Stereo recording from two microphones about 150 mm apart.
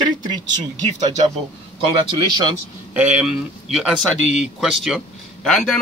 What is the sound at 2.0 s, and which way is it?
Speech, 30° right (ahead or behind).